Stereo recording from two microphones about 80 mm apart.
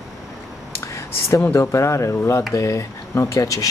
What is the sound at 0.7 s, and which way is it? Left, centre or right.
Speech, left.